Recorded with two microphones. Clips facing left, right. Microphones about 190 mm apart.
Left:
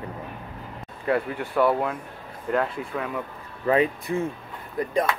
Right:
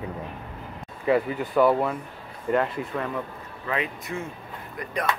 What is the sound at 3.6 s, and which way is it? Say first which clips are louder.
Speech: left 8 dB; 35° left (ahead or behind).